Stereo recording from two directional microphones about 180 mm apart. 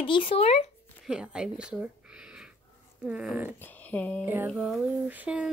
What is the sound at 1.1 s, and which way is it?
A woman's voice, 5° right (ahead or behind).